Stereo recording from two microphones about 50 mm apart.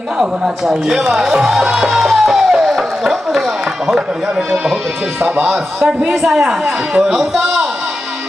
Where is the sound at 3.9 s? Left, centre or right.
Centre.